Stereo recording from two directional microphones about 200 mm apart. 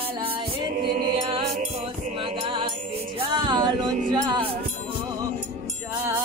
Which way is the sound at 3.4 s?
25° right (ahead or behind).